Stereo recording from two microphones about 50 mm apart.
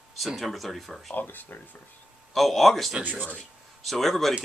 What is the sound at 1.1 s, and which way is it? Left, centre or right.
Speech, left.